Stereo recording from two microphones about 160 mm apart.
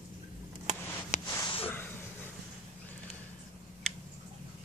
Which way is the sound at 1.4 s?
35° left (ahead or behind).